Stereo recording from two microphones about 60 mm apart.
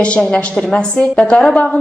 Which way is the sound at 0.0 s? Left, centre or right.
Centre.